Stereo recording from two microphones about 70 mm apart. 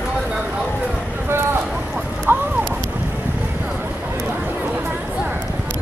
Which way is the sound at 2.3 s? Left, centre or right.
Right.